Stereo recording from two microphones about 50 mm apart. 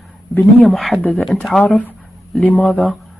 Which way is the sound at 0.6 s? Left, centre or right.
Centre.